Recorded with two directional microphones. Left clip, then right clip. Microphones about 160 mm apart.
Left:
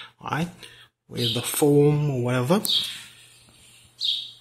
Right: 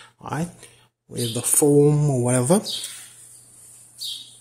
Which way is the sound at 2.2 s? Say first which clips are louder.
Right 3 dB; 30° right (ahead or behind).